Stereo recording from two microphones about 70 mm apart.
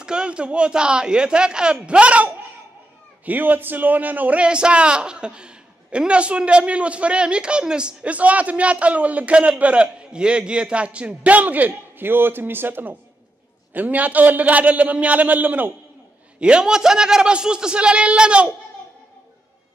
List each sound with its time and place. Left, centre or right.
0.0 s a man's voice: centre
16.3 s a man's voice: centre